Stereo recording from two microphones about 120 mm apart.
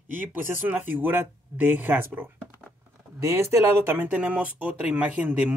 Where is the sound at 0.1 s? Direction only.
15° right (ahead or behind).